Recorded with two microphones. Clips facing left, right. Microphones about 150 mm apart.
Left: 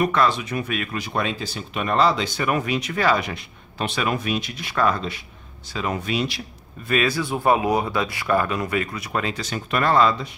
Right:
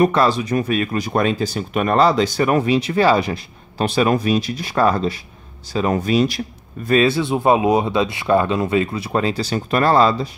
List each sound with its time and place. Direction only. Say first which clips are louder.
0.0 s speech: right 5 dB; 35° right (ahead or behind)
6.9 s speech: right 6 dB; 30° right (ahead or behind)